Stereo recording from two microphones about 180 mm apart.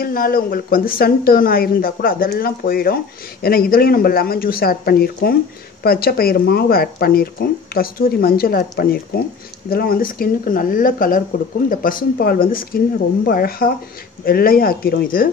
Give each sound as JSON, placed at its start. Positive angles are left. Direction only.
{"t": 0.0, "sound": "speech", "side_deg": 55}